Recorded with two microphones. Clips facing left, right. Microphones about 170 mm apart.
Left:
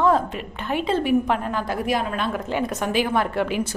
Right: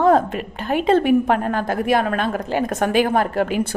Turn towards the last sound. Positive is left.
turn(degrees=-45)  # may be behind; listen again after turning